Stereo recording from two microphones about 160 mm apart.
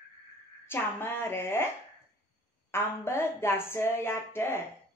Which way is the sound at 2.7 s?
15° left (ahead or behind).